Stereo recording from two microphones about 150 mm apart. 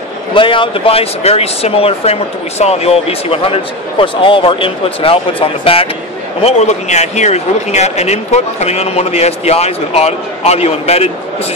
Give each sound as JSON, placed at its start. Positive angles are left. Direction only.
{"t": 0.3, "sound": "speech", "side_deg": 35}
{"t": 6.4, "sound": "speech", "side_deg": 50}